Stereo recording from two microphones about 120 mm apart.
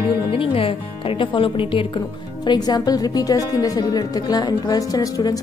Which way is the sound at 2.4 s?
35° left (ahead or behind).